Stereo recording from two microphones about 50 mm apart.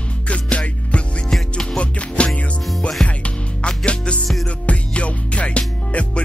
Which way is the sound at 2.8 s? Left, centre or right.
Centre.